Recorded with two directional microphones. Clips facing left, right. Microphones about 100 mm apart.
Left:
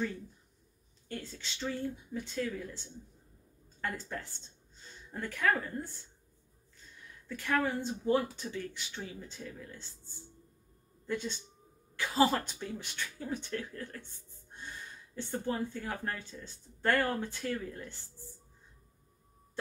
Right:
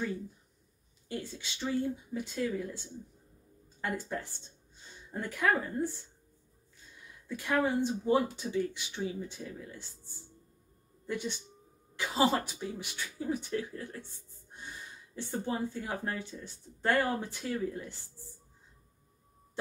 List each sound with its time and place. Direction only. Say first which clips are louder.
1.0 s speech: right 3 dB; 15° right (ahead or behind)
7.2 s speech: right 2 dB; 15° right (ahead or behind)
11.1 s speech: even; 15° right (ahead or behind)
15.1 s speech: even; 15° right (ahead or behind)